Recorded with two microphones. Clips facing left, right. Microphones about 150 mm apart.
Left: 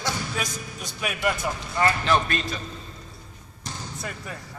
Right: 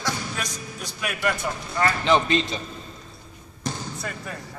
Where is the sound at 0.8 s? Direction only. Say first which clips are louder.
Even; 5° left (ahead or behind).